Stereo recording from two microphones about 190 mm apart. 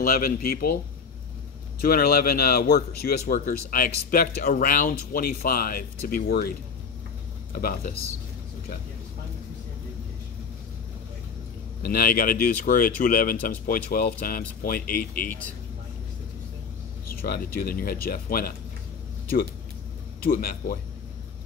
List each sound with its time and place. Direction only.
0.0 s a man's voice: 50° left (ahead or behind)
1.8 s a man's voice: 50° left (ahead or behind)
7.6 s a man's voice: 50° left (ahead or behind)
11.8 s a man's voice: 50° left (ahead or behind)
17.1 s a man's voice: 50° left (ahead or behind)
20.2 s a man's voice: 50° left (ahead or behind)